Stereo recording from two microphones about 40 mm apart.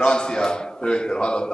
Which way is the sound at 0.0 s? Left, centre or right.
Left.